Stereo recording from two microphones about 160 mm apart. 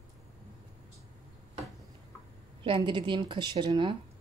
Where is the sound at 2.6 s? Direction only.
30° right (ahead or behind).